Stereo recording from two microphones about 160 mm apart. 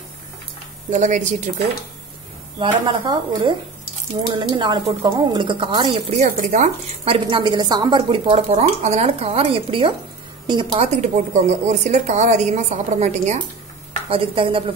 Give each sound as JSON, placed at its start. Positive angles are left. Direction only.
{"t": 0.8, "sound": "a woman's voice", "side_deg": -50}
{"t": 2.6, "sound": "speech", "side_deg": -30}
{"t": 7.1, "sound": "a woman's voice", "side_deg": -30}
{"t": 11.0, "sound": "a woman's voice", "side_deg": -45}
{"t": 14.0, "sound": "speech", "side_deg": -35}